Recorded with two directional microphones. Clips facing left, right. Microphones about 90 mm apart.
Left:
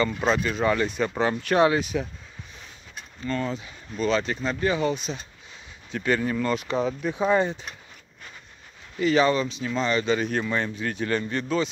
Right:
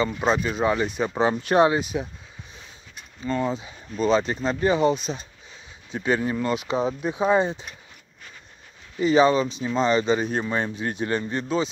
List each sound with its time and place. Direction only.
0.2 s speech: 15° right (ahead or behind)
3.3 s speech: 15° right (ahead or behind)
9.0 s speech: 20° right (ahead or behind)